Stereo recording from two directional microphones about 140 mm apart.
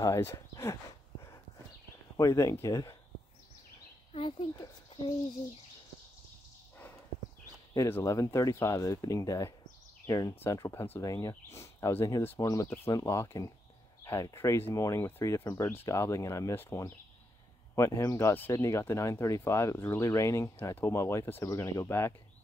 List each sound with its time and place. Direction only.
0.0 s speech: 20° left (ahead or behind)
2.1 s speech: 20° left (ahead or behind)
4.1 s speech: 40° left (ahead or behind)
7.7 s speech: 20° left (ahead or behind)